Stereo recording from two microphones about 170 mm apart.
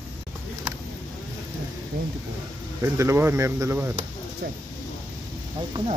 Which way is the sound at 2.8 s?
15° right (ahead or behind).